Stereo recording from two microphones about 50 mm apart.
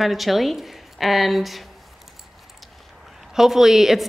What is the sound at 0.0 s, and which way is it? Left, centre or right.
A woman's voice, centre.